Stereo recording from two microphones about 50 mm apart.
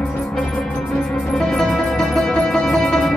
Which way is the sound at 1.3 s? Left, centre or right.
Centre.